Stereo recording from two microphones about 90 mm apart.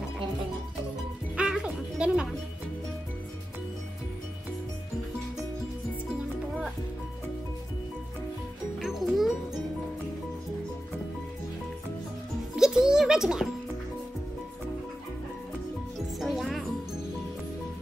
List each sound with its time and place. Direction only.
1.3 s music: 10° right (ahead or behind)
8.7 s music: centre (ahead or behind)
12.5 s music: 5° right (ahead or behind)
16.2 s music: centre (ahead or behind)